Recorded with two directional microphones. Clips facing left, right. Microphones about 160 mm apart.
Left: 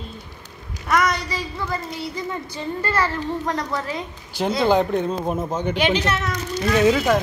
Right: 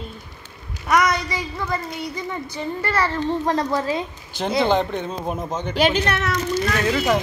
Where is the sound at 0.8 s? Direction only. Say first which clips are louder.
Right 1 dB; 15° right (ahead or behind).